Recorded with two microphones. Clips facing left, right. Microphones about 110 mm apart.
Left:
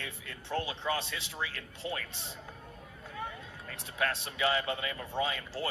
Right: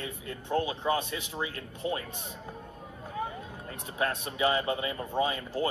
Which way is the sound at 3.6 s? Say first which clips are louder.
Right 2 dB; 25° right (ahead or behind).